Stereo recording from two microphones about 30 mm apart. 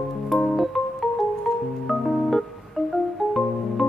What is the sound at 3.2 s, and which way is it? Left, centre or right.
Organ, centre.